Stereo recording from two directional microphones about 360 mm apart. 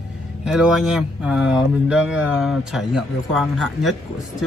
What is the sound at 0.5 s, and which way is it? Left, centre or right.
Speech, centre.